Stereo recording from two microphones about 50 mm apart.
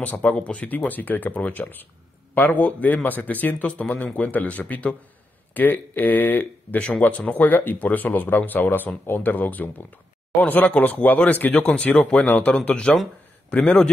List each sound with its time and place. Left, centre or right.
0.0 s a man's voice: left
3.6 s speech: left
11.6 s speech: left